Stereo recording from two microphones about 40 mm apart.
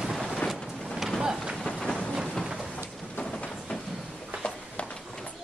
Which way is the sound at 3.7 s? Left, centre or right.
Left.